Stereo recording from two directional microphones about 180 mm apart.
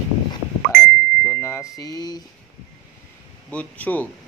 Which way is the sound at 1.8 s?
20° left (ahead or behind).